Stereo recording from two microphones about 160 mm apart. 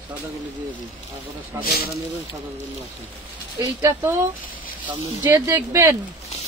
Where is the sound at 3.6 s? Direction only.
15° right (ahead or behind).